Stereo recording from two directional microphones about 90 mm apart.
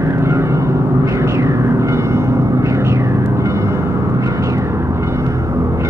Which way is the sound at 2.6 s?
35° right (ahead or behind).